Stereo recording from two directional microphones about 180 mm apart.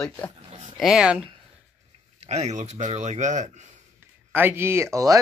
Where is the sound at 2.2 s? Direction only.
40° right (ahead or behind).